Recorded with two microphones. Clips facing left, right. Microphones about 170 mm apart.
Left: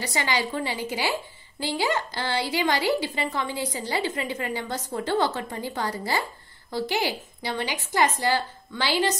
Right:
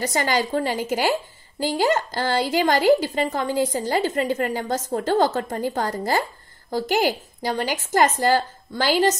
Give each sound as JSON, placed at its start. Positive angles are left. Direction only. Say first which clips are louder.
{"t": 0.0, "sound": "a woman's voice", "louder": "right 5 dB", "side_deg": -45}